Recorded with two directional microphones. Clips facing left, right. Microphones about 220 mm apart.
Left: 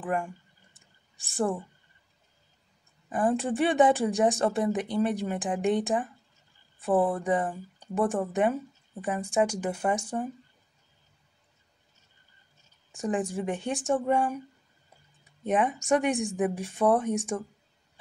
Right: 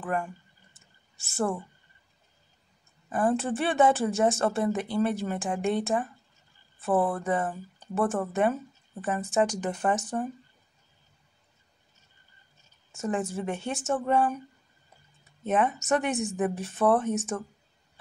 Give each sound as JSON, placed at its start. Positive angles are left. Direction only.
{"t": 0.0, "sound": "a woman's voice", "side_deg": 15}
{"t": 0.7, "sound": "a sound", "side_deg": 15}
{"t": 3.1, "sound": "a woman's voice", "side_deg": 15}
{"t": 12.9, "sound": "a woman's voice", "side_deg": 15}